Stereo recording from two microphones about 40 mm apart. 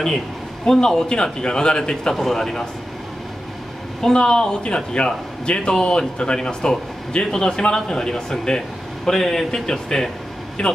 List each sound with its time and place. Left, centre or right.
0.7 s a man's voice: centre
2.1 s speech: centre
4.0 s a man's voice: centre